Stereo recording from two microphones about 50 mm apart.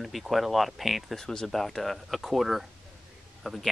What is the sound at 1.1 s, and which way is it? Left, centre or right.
Speech, centre.